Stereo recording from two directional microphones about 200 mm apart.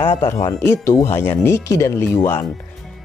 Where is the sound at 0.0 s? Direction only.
20° left (ahead or behind).